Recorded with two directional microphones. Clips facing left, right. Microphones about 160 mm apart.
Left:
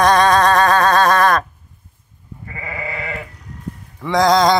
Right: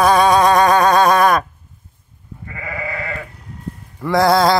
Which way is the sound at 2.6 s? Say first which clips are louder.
Right 1 dB; 20° left (ahead or behind).